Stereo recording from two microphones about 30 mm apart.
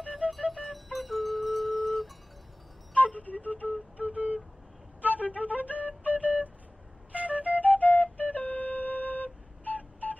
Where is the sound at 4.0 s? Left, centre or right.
Right.